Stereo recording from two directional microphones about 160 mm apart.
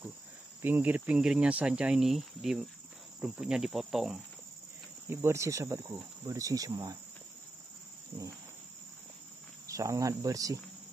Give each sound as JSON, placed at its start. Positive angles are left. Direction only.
{"t": 0.6, "sound": "speech", "side_deg": -15}
{"t": 3.2, "sound": "cricket", "side_deg": -5}
{"t": 5.1, "sound": "speech", "side_deg": -15}
{"t": 9.7, "sound": "speech", "side_deg": -20}